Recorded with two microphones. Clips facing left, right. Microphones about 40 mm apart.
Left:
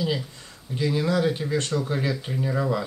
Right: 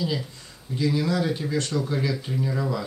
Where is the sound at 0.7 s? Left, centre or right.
Centre.